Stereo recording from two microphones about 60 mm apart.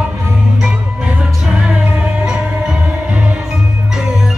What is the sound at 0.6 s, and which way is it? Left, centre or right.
Music, centre.